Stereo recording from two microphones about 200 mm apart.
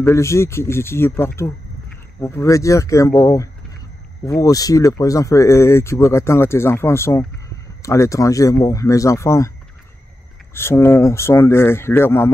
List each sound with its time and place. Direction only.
0.0 s speech: 15° left (ahead or behind)
10.5 s speech: 10° left (ahead or behind)